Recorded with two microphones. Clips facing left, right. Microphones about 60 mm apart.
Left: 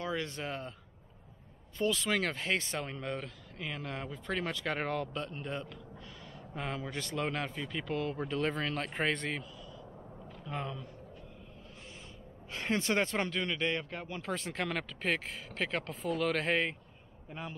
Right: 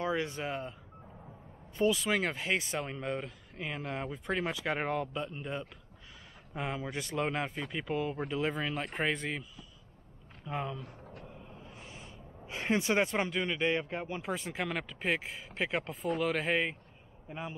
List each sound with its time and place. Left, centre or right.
0.0 s speech: right
1.8 s speech: centre
10.4 s speech: centre
12.4 s speech: centre
15.9 s speech: centre